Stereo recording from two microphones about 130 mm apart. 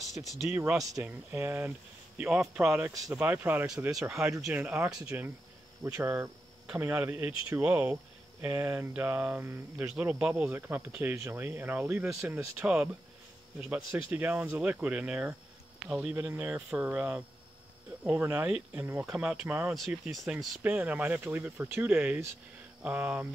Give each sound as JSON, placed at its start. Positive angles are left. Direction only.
{"t": 0.0, "sound": "speech", "side_deg": 0}
{"t": 0.7, "sound": "a man's voice", "side_deg": -25}
{"t": 3.1, "sound": "speech", "side_deg": -10}
{"t": 14.1, "sound": "speech", "side_deg": -10}